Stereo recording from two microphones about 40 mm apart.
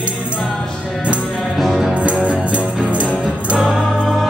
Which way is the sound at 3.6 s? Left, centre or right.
Centre.